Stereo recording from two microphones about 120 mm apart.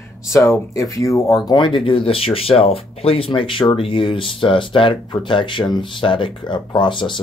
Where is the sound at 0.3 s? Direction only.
25° left (ahead or behind).